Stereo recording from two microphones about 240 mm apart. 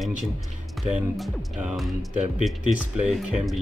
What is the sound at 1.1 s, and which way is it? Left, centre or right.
Speech, centre.